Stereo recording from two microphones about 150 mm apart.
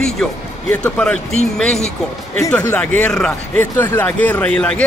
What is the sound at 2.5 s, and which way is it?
A man's voice, 10° left (ahead or behind).